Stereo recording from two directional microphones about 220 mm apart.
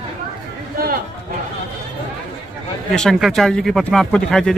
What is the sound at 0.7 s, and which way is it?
Chatter, 40° right (ahead or behind).